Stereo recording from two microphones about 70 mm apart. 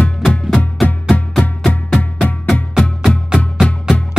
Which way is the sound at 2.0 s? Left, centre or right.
Left.